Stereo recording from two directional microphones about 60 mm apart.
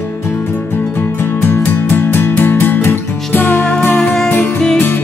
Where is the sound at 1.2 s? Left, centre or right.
Left.